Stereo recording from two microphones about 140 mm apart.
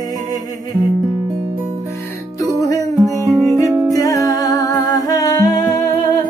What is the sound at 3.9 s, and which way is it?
Humming, 25° left (ahead or behind).